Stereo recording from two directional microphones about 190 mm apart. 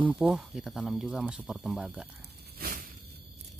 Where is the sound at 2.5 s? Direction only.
50° right (ahead or behind).